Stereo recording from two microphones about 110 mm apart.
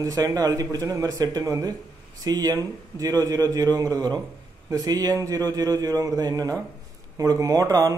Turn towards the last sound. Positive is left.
turn(degrees=-35)  # may be behind; listen again after turning